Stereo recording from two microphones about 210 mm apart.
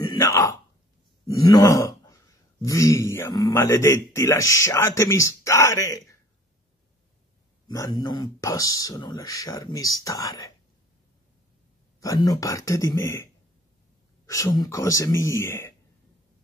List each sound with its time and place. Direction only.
0.0 s a sound: 15° left (ahead or behind)
1.2 s groan: 15° left (ahead or behind)
2.6 s a man's voice: 15° left (ahead or behind)
7.6 s a man's voice: 15° left (ahead or behind)
12.0 s a man's voice: 15° left (ahead or behind)